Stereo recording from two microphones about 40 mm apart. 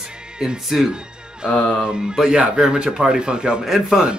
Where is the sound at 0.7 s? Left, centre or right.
Centre.